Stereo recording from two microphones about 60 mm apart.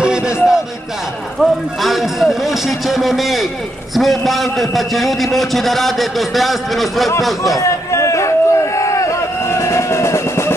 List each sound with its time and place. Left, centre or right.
0.0 s music: centre
1.4 s a man's voice: centre
7.9 s a sound: left